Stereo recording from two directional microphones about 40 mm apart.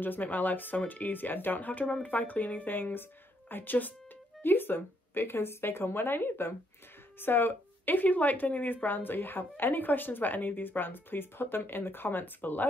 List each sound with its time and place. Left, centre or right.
0.0 s speech: left
4.4 s speech: left